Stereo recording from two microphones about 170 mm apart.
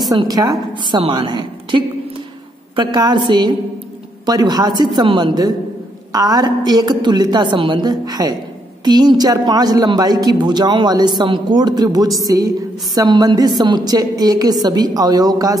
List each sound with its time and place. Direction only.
0.1 s a woman's voice: 20° right (ahead or behind)